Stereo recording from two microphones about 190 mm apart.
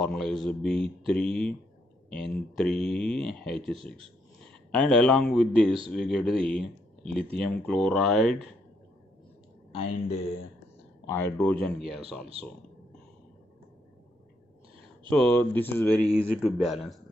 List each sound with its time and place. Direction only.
0.0 s a man's voice: centre (ahead or behind)
9.7 s speech: 30° left (ahead or behind)
11.1 s speech: 15° left (ahead or behind)
11.6 s speech: centre (ahead or behind)
12.4 s speech: 30° right (ahead or behind)
15.0 s speech: 5° left (ahead or behind)
16.1 s speech: centre (ahead or behind)